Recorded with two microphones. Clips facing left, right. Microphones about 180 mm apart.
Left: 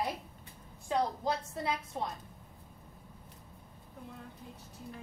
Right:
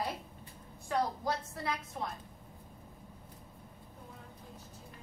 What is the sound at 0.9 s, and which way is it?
A woman's voice, 20° left (ahead or behind).